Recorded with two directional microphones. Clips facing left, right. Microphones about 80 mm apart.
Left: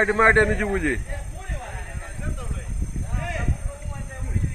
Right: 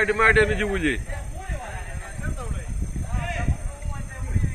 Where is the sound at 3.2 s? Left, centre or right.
Centre.